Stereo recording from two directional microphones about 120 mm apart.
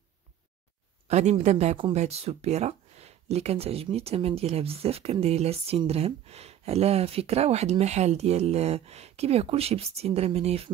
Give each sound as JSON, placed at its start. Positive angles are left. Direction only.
{"t": 1.0, "sound": "speech", "side_deg": -70}
{"t": 2.0, "sound": "speech", "side_deg": -60}